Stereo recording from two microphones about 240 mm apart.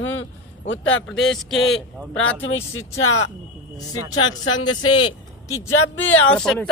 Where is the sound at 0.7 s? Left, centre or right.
Left.